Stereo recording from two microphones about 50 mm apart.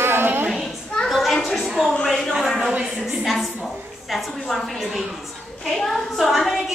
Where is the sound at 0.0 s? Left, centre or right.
Right.